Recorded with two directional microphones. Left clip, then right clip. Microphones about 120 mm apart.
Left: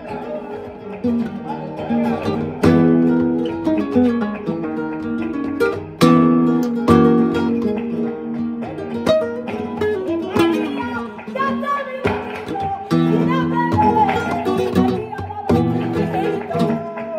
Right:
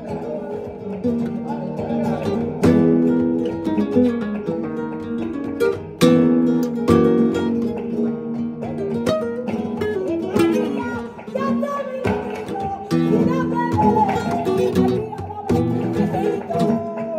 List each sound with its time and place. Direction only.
1.9 s music: 15° left (ahead or behind)
9.8 s music: 15° left (ahead or behind)
12.9 s music: 15° left (ahead or behind)